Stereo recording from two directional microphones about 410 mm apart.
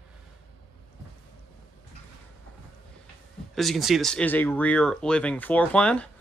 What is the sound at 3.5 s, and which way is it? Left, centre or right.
Speech, centre.